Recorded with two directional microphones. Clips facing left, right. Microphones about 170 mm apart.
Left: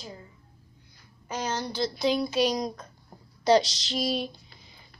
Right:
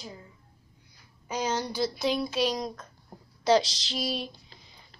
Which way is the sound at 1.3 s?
15° right (ahead or behind).